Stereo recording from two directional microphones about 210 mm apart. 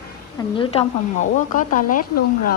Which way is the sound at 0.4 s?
25° left (ahead or behind).